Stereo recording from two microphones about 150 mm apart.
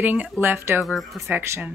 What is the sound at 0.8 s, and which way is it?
Speech, centre (ahead or behind).